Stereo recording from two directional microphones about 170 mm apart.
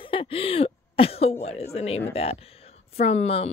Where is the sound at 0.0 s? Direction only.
30° left (ahead or behind).